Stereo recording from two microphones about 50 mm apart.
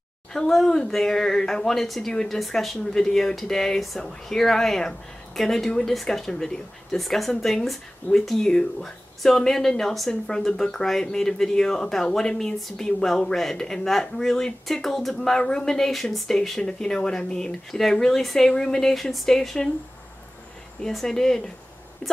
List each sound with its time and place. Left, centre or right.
0.3 s speech: centre
20.8 s speech: centre
22.0 s speech: left